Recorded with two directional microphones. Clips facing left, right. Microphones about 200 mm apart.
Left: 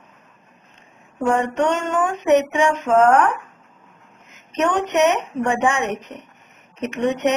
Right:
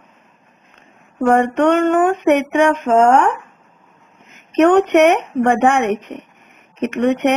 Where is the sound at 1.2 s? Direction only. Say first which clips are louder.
Right 5 dB; 60° right (ahead or behind).